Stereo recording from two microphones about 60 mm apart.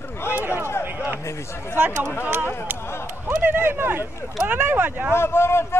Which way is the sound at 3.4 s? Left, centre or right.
Right.